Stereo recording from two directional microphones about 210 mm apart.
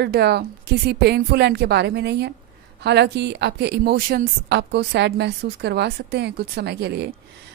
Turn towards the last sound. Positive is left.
turn(degrees=-55)  # may be behind; listen again after turning